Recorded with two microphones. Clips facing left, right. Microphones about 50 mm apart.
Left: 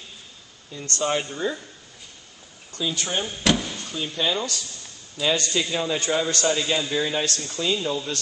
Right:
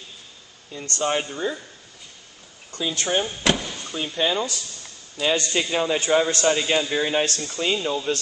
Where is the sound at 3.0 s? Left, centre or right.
Centre.